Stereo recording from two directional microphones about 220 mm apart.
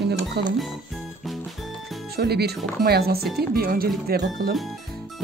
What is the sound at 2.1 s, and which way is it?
Speech, 45° right (ahead or behind).